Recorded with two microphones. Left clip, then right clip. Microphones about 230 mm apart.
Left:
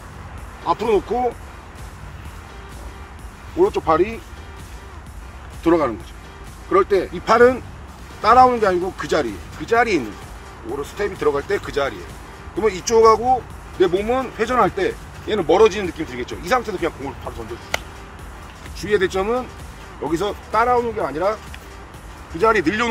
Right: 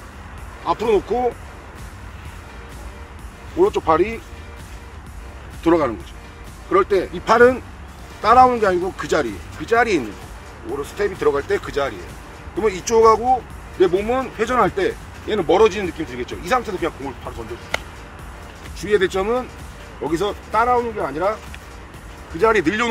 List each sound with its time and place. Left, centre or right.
0.7 s speech: centre
3.5 s speech: centre
5.6 s speech: centre
17.7 s music: left
18.8 s speech: centre
22.4 s speech: centre